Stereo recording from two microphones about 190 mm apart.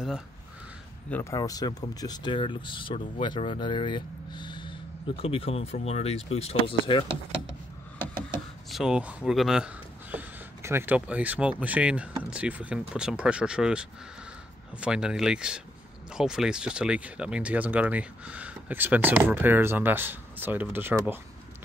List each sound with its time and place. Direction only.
1.1 s speech: 15° left (ahead or behind)
8.6 s speech: centre (ahead or behind)
10.1 s a sound: 15° right (ahead or behind)
11.0 s speech: 5° right (ahead or behind)